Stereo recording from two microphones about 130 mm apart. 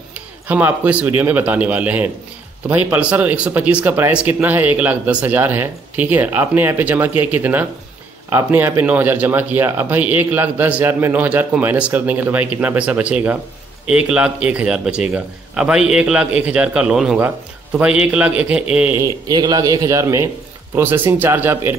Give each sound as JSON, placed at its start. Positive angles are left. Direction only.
{"t": 0.1, "sound": "a man's voice", "side_deg": -10}
{"t": 18.9, "sound": "a man's voice", "side_deg": -30}